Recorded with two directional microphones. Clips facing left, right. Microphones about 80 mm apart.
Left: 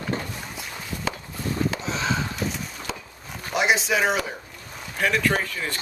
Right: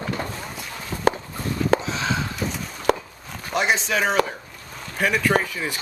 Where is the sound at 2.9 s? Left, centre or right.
Right.